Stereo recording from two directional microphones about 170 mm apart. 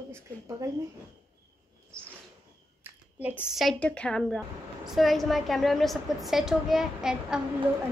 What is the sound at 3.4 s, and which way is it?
A woman's voice, centre (ahead or behind).